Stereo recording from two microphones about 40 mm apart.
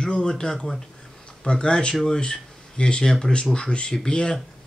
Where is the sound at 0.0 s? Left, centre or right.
Centre.